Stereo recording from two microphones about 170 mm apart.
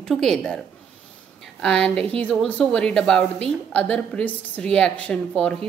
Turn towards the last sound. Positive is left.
turn(degrees=5)  # may be behind; listen again after turning